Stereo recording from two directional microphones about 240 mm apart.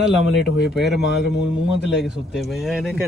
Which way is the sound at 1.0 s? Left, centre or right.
Left.